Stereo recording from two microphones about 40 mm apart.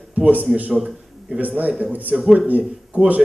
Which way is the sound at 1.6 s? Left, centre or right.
Right.